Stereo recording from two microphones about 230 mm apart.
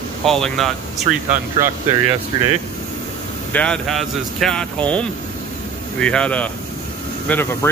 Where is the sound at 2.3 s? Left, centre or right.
Centre.